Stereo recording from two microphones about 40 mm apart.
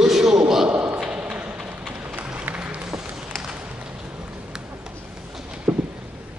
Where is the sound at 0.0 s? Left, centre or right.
Centre.